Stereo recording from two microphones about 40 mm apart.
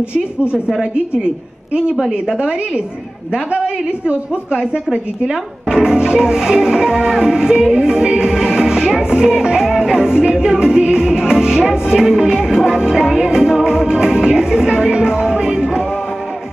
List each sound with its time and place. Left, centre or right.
0.9 s a woman's voice: right
2.0 s a woman's voice: centre